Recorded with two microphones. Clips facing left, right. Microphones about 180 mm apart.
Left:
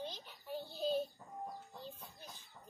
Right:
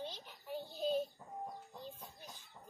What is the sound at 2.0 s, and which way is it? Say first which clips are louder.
Music: right 1 dB; 15° right (ahead or behind).